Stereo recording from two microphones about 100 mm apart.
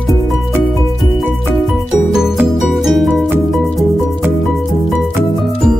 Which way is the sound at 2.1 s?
5° right (ahead or behind).